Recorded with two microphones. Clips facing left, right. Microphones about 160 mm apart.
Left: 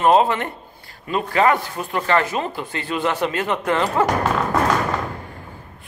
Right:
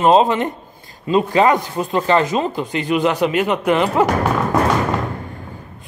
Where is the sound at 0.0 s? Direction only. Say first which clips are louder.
Right 3 dB; 20° right (ahead or behind).